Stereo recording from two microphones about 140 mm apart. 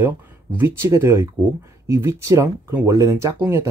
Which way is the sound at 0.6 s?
20° right (ahead or behind).